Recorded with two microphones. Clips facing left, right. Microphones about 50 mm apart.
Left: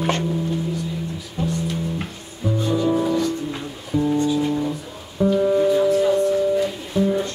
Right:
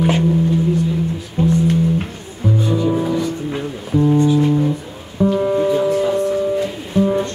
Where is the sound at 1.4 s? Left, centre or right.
Right.